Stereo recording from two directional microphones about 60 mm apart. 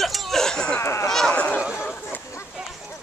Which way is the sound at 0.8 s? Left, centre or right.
Left.